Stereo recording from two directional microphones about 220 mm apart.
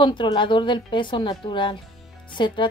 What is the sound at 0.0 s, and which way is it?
A woman's voice, 20° left (ahead or behind).